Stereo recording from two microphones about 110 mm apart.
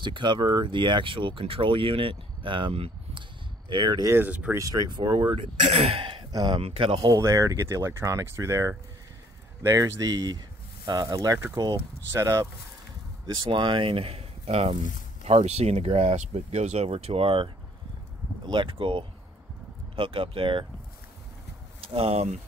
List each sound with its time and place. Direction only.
0.0 s speech: 45° right (ahead or behind)
4.1 s speech: 15° right (ahead or behind)
4.6 s speech: 35° right (ahead or behind)
5.7 s speech: 65° right (ahead or behind)
6.3 s speech: 45° right (ahead or behind)
7.1 s speech: 30° right (ahead or behind)
13.3 s speech: 45° right (ahead or behind); by 14.8 s 65° right (ahead or behind)
15.2 s speech: 85° right; by 17.5 s 55° right (ahead or behind)
18.5 s speech: 50° right (ahead or behind)
21.8 s speech: 60° right (ahead or behind)